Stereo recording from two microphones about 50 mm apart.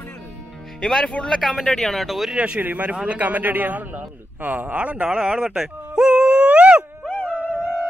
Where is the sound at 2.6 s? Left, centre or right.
Right.